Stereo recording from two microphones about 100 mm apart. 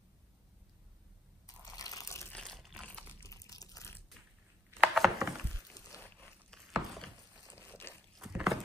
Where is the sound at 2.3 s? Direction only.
5° left (ahead or behind).